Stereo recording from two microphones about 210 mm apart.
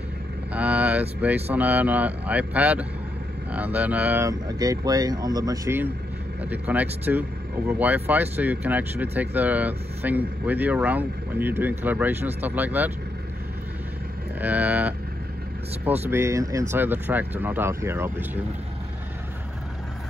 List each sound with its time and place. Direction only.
0.5 s vehicle: 5° right (ahead or behind)
1.2 s speech: 10° right (ahead or behind)
14.4 s speech: 10° right (ahead or behind)
16.0 s speech: 10° right (ahead or behind)